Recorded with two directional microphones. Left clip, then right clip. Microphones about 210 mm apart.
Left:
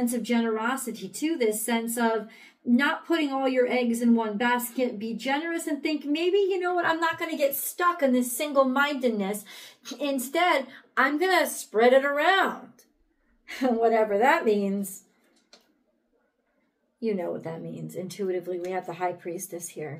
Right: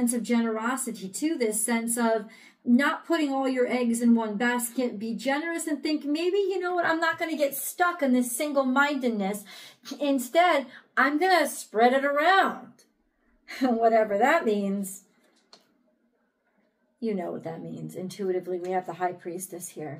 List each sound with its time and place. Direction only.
0.0 s a woman's voice: centre (ahead or behind)
17.0 s a woman's voice: 10° left (ahead or behind)